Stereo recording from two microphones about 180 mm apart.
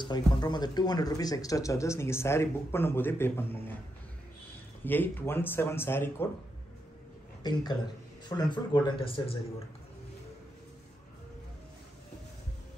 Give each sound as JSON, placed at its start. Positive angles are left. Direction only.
{"t": 0.0, "sound": "speech", "side_deg": 25}
{"t": 4.8, "sound": "speech", "side_deg": 10}
{"t": 8.3, "sound": "speech", "side_deg": 25}